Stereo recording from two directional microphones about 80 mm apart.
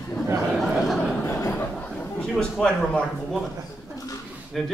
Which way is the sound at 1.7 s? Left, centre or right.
Centre.